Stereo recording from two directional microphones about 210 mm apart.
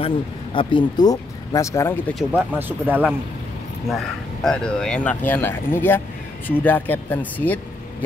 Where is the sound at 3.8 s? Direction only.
Centre (ahead or behind).